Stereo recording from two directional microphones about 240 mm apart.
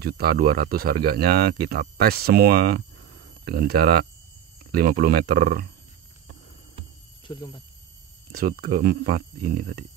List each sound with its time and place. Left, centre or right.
0.0 s speech: right
7.2 s speech: centre
8.3 s speech: right